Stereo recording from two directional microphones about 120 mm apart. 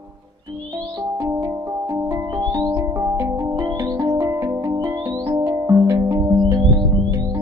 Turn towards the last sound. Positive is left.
turn(degrees=-30)  # may be behind; listen again after turning